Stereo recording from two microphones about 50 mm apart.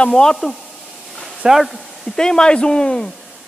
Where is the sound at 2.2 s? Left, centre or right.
Centre.